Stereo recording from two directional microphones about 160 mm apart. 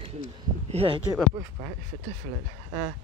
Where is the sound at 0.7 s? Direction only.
35° right (ahead or behind).